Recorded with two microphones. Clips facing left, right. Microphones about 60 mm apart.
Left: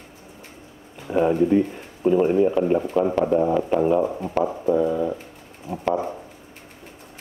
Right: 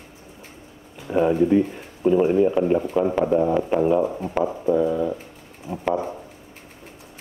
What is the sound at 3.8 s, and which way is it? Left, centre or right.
Speech, centre.